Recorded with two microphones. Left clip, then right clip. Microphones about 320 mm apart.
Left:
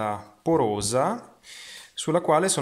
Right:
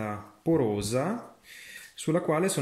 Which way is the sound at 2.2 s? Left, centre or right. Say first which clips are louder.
Left 8 dB; centre.